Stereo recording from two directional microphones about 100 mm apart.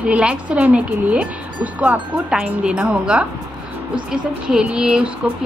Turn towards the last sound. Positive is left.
turn(degrees=-10)  # may be behind; listen again after turning